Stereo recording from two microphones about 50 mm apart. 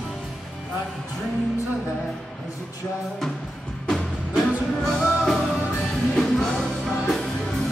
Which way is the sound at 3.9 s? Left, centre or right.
Centre.